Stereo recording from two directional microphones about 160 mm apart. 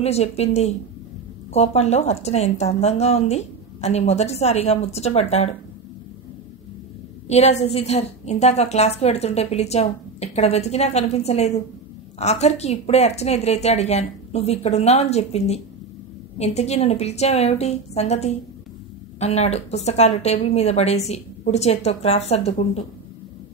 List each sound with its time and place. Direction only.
0.0 s speech: 40° left (ahead or behind)
7.2 s a woman's voice: 45° left (ahead or behind)